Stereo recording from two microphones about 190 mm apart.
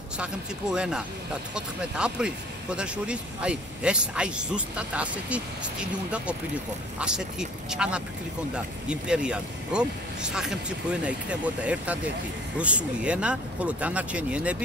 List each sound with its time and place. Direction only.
0.2 s speech: 5° right (ahead or behind)